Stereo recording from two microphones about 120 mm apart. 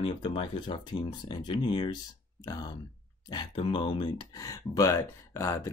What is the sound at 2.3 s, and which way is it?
Speech, 30° left (ahead or behind).